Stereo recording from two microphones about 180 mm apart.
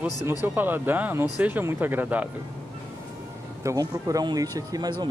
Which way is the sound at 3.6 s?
20° right (ahead or behind).